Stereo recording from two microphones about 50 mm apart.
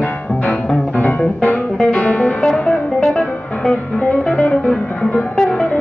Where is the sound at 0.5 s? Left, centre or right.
Left.